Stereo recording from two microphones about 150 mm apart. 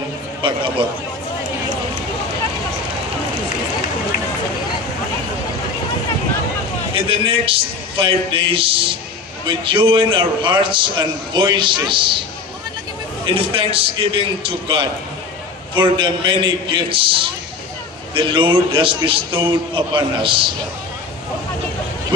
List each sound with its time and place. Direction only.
7.1 s a man's voice: 35° right (ahead or behind)
13.2 s a man's voice: 35° right (ahead or behind)